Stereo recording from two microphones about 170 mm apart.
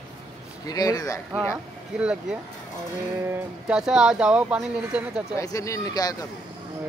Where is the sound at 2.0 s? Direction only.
5° right (ahead or behind).